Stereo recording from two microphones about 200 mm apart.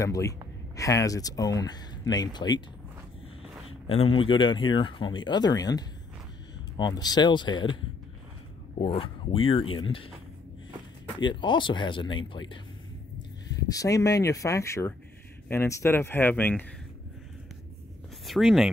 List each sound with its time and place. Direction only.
0.0 s speech: 15° left (ahead or behind)
4.2 s speech: 25° left (ahead or behind)
8.7 s speech: 30° left (ahead or behind)
11.1 s speech: 25° left (ahead or behind)
13.7 s speech: 15° left (ahead or behind)
18.2 s speech: centre (ahead or behind)